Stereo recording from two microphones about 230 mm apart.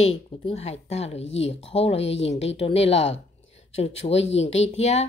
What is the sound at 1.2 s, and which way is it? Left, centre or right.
Speech, left.